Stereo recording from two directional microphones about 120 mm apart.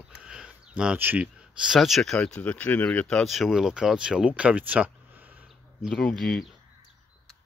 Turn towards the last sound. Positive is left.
turn(degrees=5)  # may be behind; listen again after turning